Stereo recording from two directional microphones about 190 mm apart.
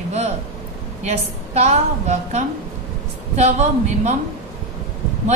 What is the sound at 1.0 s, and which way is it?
A woman's voice, 35° right (ahead or behind).